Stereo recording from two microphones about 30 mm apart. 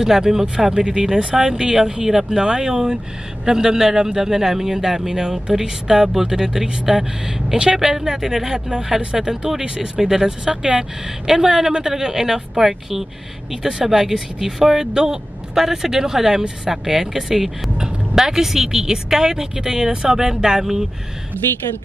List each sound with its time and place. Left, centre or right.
0.0 s a man's voice: centre
2.3 s a man's voice: right
10.2 s speech: right
10.8 s a man's voice: centre